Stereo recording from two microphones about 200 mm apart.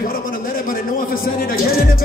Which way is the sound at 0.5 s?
45° left (ahead or behind).